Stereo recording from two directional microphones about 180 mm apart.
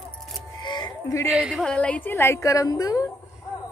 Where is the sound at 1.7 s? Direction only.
5° left (ahead or behind).